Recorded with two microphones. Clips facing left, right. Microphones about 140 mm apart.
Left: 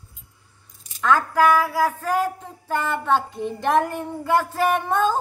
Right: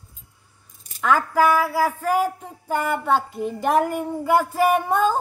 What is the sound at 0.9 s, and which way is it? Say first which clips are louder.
A woman's voice: even; 10° right (ahead or behind).